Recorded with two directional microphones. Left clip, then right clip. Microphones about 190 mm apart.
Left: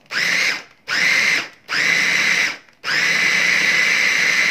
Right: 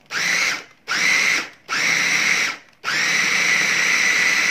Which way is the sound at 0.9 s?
10° left (ahead or behind).